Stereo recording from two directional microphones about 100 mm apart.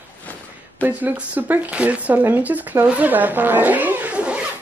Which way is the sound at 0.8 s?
15° right (ahead or behind).